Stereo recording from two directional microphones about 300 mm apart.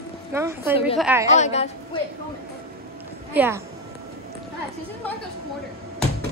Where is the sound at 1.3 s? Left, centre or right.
Left.